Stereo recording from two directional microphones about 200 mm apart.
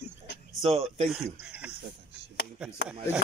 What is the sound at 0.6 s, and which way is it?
Speech, 30° right (ahead or behind).